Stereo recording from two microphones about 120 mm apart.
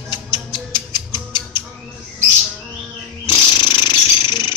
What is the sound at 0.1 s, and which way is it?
Music, 40° left (ahead or behind).